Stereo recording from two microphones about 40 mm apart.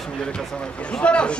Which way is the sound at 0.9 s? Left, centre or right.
Left.